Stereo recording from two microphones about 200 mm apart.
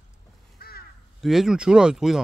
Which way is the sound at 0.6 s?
50° left (ahead or behind).